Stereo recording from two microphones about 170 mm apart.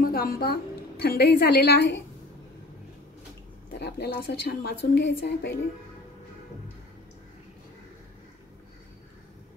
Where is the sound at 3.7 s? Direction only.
70° left (ahead or behind); by 5.5 s 85° left.